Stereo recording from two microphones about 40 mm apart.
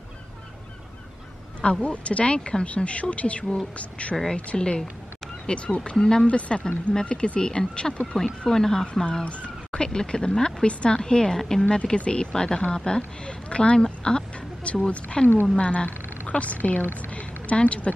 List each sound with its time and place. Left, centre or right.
1.6 s speech: left
4.6 s speech: left
5.9 s speech: centre
6.2 s speech: left
8.1 s speech: centre
9.2 s a sound: left
9.8 s speech: centre
11.0 s speech: centre
11.7 s speech: left
14.6 s a woman's voice: left
17.0 s a sound: left